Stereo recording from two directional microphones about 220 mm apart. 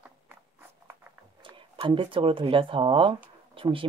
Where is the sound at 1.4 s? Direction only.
25° right (ahead or behind).